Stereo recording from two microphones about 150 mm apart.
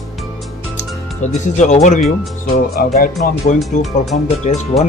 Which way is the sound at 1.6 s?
50° left (ahead or behind).